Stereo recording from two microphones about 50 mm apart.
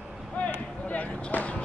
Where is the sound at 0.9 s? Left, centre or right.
Left.